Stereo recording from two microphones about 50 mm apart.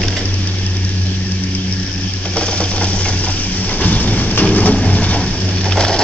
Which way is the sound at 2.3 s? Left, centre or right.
Left.